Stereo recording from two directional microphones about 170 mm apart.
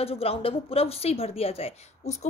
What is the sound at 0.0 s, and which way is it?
A woman's voice, 35° left (ahead or behind).